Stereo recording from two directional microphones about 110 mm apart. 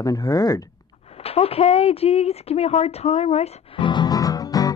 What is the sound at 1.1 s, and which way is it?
Speech, 65° left (ahead or behind).